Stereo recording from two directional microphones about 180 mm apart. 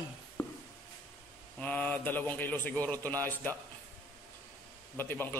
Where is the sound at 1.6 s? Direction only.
10° left (ahead or behind).